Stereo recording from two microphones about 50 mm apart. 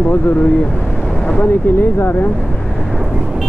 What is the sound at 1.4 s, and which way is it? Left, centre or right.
Speech, left.